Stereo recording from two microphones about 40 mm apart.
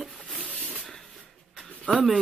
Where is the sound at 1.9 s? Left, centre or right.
Left.